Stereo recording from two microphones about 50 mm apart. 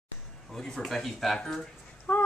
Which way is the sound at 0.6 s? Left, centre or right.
Centre.